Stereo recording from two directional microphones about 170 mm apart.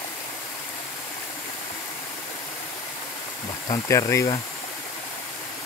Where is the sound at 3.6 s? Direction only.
15° left (ahead or behind).